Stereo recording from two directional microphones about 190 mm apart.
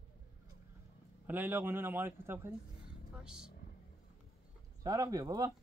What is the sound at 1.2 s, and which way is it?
A man's voice, 10° right (ahead or behind).